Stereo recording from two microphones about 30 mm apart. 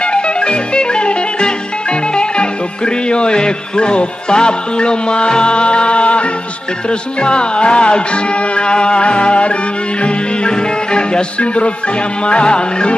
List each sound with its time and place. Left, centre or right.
0.0 s music: left